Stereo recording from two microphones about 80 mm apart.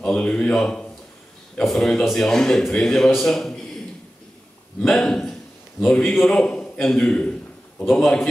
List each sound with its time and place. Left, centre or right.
0.0 s a man's voice: centre
4.8 s a man's voice: centre
6.1 s a man's voice: centre
6.4 s a sound: centre
6.8 s a man's voice: centre